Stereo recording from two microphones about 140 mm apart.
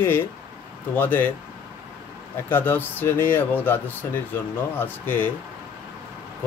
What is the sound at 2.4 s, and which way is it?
Speech, 15° left (ahead or behind).